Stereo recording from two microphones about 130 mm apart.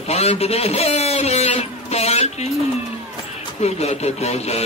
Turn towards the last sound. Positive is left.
turn(degrees=55)  # may be behind; listen again after turning